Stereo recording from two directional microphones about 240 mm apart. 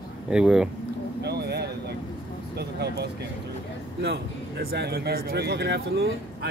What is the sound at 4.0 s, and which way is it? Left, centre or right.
A man's voice, right.